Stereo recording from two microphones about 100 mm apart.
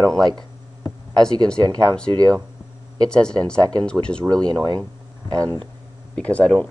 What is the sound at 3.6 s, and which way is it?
Speech, 45° right (ahead or behind).